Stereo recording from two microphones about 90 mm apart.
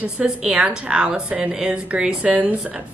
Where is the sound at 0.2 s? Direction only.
15° right (ahead or behind).